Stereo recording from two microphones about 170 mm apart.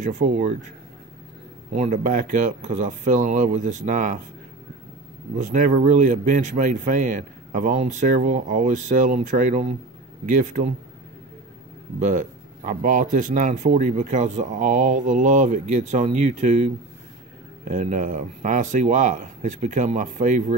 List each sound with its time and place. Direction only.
0.0 s speech: 45° right (ahead or behind)
1.7 s speech: 40° right (ahead or behind)
5.4 s speech: 50° right (ahead or behind)
12.0 s speech: 45° right (ahead or behind)